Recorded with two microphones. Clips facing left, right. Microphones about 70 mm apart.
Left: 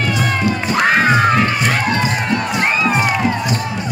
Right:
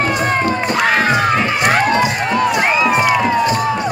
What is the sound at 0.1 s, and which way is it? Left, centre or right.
Cat, right.